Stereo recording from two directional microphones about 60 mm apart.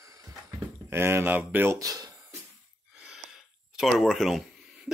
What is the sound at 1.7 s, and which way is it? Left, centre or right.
Speech, right.